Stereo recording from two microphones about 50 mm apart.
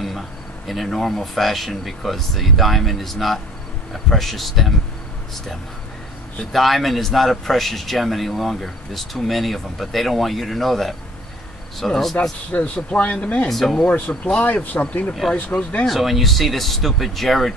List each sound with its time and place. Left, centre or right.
0.7 s a man's voice: centre
6.5 s a man's voice: centre
12.2 s speech: left
13.5 s a man's voice: centre
13.8 s speech: left
15.8 s a man's voice: centre